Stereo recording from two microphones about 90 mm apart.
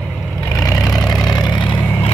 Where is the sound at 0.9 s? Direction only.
5° left (ahead or behind).